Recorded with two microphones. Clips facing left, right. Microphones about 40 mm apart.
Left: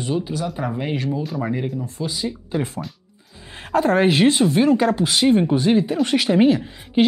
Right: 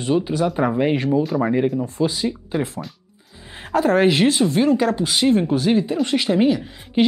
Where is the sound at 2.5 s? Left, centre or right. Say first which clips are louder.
Right 1 dB; centre.